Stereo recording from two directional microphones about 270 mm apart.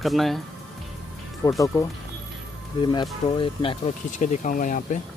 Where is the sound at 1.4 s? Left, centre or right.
Centre.